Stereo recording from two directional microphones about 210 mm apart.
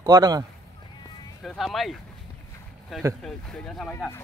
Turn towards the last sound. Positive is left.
turn(degrees=5)  # may be behind; listen again after turning